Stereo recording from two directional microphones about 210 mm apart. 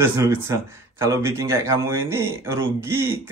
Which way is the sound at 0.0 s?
10° right (ahead or behind).